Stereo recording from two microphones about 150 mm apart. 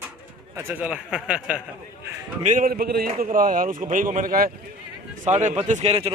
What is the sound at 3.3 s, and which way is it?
Speech, 65° right (ahead or behind).